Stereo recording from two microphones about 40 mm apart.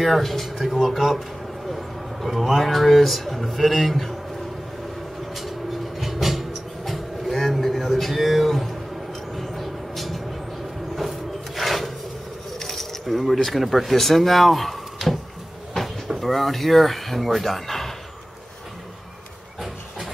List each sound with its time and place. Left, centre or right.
0.0 s speech: centre
5.3 s vehicle: centre
11.0 s wood: centre
12.5 s keys jangling: centre
13.4 s speech: centre
16.2 s speech: centre